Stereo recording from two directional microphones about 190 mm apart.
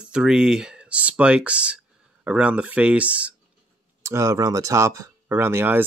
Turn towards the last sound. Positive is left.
turn(degrees=-10)  # may be behind; listen again after turning